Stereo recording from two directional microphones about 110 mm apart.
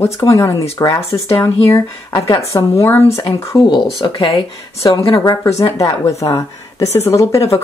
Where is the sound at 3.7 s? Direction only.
45° left (ahead or behind).